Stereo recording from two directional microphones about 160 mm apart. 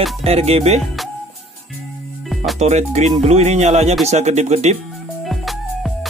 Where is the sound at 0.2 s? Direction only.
40° right (ahead or behind).